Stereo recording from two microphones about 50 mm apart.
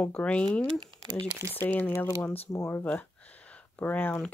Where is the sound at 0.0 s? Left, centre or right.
Left.